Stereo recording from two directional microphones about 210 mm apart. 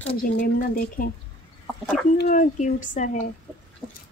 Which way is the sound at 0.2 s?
40° left (ahead or behind).